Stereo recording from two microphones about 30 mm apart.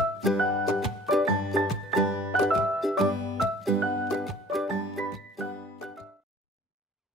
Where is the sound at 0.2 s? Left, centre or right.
Centre.